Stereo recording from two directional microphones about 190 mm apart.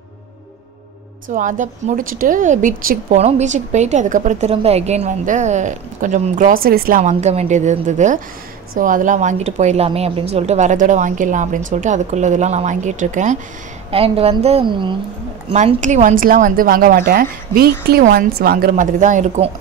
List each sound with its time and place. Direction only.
1.3 s a woman's voice: 45° right (ahead or behind)